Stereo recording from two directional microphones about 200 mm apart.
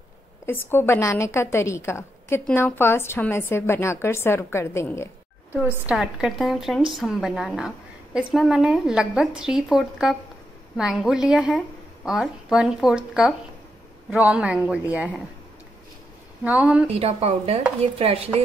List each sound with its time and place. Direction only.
0.5 s a woman's voice: 10° left (ahead or behind)
5.5 s a woman's voice: 10° right (ahead or behind)
16.4 s speech: 5° right (ahead or behind)
17.0 s speech: 30° right (ahead or behind)
17.7 s chopping: 30° right (ahead or behind)